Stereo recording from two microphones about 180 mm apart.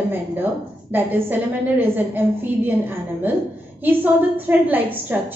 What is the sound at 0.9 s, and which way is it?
A woman's voice, 10° right (ahead or behind).